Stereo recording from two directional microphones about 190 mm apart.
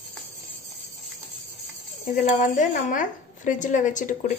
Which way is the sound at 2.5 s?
40° left (ahead or behind).